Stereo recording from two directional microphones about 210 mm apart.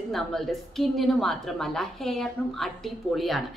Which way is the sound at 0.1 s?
Centre (ahead or behind).